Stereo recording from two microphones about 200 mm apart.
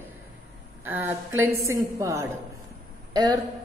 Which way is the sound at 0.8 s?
10° right (ahead or behind).